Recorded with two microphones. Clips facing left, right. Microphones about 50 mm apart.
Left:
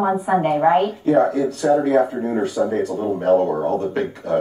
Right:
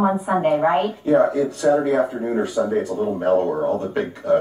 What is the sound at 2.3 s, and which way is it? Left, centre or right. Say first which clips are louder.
Speech: left 1 dB; centre.